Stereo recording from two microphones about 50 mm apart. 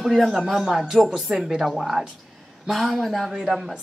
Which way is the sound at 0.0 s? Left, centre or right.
Centre.